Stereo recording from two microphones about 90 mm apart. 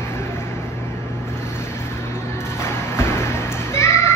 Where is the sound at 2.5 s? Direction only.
30° left (ahead or behind).